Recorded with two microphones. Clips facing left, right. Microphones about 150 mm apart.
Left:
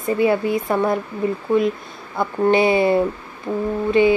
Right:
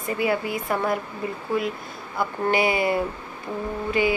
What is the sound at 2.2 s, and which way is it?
Speech, 25° left (ahead or behind).